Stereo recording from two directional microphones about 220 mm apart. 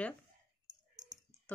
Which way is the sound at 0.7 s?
35° right (ahead or behind).